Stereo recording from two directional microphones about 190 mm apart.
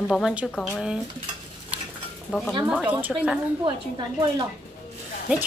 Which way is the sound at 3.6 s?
25° right (ahead or behind).